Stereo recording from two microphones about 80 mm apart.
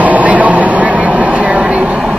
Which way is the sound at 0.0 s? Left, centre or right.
Centre.